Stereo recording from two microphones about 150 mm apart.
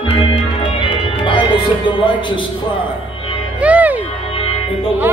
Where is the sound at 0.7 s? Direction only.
35° left (ahead or behind).